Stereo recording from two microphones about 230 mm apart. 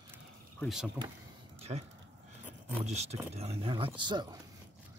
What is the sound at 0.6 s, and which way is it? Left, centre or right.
Speech, centre.